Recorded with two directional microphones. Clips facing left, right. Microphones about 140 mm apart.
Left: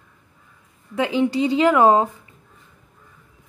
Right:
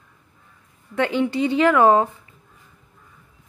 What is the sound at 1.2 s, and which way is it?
Speech, 15° left (ahead or behind).